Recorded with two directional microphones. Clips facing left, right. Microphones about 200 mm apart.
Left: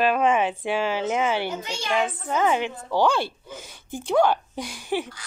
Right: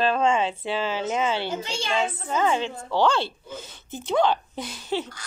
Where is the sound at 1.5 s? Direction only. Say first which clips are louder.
Even; 30° right (ahead or behind).